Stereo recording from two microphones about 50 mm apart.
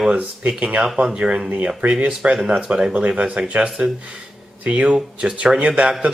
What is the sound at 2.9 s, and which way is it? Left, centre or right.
Speech, right.